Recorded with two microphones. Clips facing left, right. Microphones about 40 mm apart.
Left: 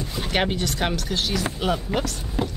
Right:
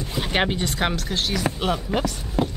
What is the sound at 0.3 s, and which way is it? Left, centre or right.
Speech, centre.